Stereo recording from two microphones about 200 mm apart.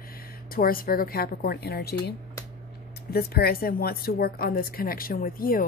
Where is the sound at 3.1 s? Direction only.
50° left (ahead or behind).